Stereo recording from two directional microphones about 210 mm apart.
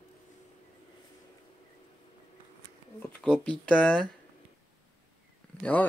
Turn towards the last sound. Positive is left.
turn(degrees=5)  # may be behind; listen again after turning